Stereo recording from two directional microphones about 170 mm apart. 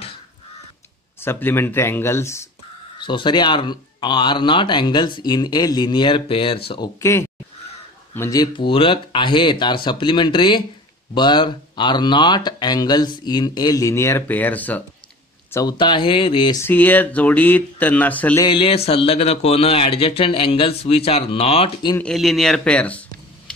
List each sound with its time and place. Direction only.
1.2 s speech: 15° left (ahead or behind)
3.0 s speech: 30° left (ahead or behind)
6.7 s speech: 20° left (ahead or behind)
15.5 s speech: 25° left (ahead or behind)
16.6 s speech: 10° left (ahead or behind)
18.4 s a man's voice: 30° left (ahead or behind)
21.9 s speech: 5° left (ahead or behind)